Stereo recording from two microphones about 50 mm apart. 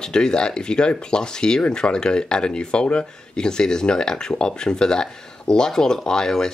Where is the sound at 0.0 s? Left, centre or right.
Centre.